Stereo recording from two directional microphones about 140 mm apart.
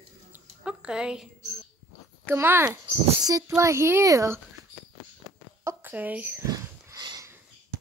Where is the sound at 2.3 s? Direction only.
15° right (ahead or behind).